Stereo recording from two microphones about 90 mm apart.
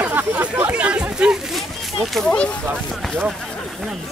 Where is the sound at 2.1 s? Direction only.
10° left (ahead or behind).